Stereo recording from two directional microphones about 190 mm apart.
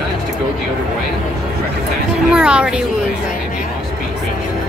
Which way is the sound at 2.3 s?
5° right (ahead or behind).